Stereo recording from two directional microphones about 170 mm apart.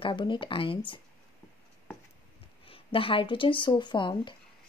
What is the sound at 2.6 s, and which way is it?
Speech, 30° left (ahead or behind).